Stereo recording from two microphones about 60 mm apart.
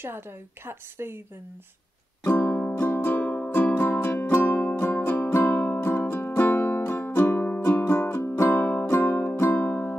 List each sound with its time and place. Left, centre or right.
0.7 s a woman's voice: right
2.2 s music: left